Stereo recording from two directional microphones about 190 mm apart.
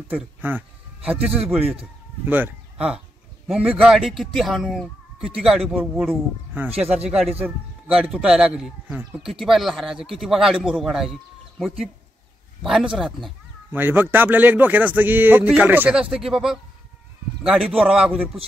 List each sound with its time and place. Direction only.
0.1 s a man's voice: 10° right (ahead or behind)